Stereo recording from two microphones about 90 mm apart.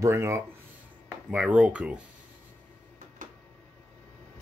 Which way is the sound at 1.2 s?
10° right (ahead or behind).